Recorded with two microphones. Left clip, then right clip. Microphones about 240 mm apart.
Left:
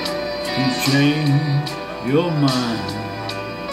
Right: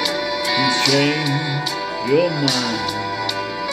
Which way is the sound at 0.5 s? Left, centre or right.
Right.